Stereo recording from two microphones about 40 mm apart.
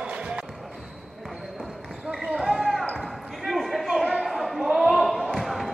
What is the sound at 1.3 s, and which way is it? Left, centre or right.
Basketball bounce, centre.